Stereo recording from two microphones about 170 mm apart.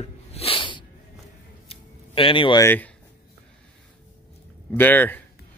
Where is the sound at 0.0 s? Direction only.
35° left (ahead or behind).